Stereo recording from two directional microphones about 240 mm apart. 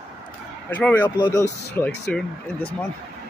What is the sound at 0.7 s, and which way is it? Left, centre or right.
Speech, centre.